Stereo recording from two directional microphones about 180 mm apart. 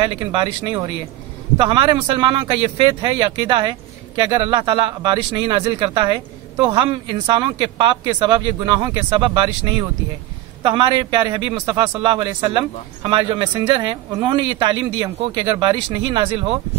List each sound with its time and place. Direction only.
0.2 s a man's voice: 25° right (ahead or behind)